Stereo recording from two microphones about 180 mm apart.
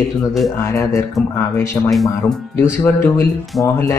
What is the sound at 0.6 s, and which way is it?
Speech, 15° left (ahead or behind).